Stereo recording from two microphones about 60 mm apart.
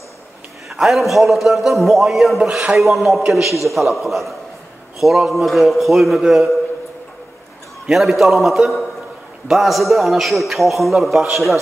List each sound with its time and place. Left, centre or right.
0.7 s a man's voice: centre
2.4 s speech: centre
2.8 s a man's voice: centre
7.8 s a man's voice: centre